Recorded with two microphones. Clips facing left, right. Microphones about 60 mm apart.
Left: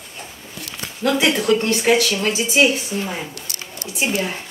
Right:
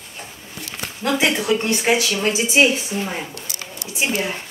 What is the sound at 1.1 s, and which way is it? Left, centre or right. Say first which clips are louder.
Speech: left 1 dB; centre.